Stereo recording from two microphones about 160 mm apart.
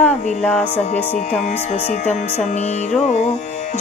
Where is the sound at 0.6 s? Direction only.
45° left (ahead or behind).